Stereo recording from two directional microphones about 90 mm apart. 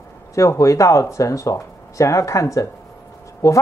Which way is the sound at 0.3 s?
35° left (ahead or behind).